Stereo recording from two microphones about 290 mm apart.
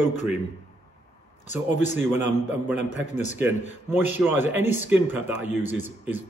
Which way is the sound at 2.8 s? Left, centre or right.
Left.